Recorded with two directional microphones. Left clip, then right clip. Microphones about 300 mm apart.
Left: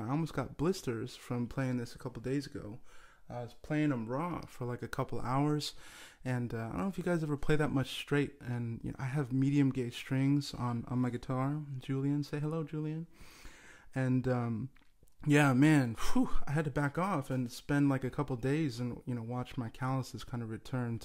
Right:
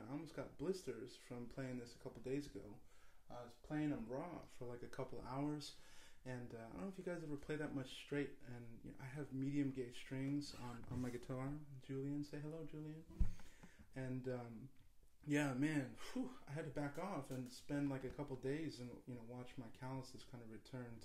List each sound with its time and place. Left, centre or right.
0.1 s speech: left
13.9 s speech: left